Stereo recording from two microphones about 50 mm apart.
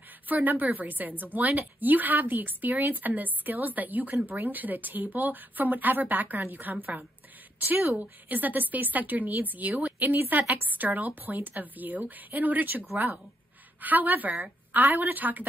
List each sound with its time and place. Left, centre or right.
0.3 s a woman's voice: right